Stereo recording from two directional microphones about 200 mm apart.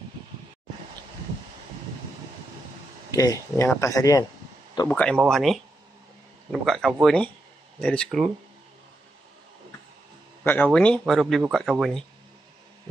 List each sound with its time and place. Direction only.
3.1 s a man's voice: 15° left (ahead or behind)
4.8 s a man's voice: 5° left (ahead or behind)
10.4 s speech: 10° left (ahead or behind)